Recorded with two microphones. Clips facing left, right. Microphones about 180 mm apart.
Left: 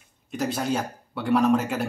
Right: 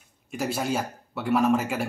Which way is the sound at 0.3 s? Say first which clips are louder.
Left 1 dB; 5° right (ahead or behind).